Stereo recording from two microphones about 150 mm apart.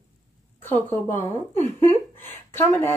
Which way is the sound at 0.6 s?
15° left (ahead or behind).